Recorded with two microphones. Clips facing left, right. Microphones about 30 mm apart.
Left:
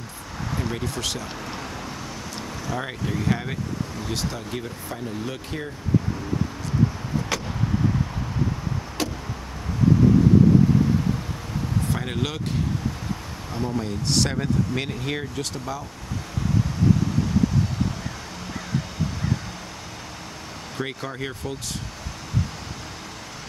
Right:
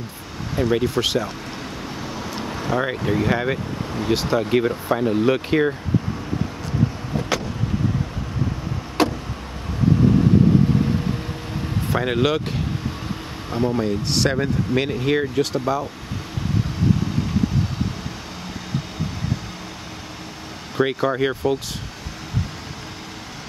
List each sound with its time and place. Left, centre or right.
0.6 s speech: right
2.8 s speech: centre
4.4 s speech: right
7.3 s vehicle: centre
9.0 s vehicle: right
11.9 s speech: right
13.5 s speech: right
14.1 s speech: centre
20.7 s speech: right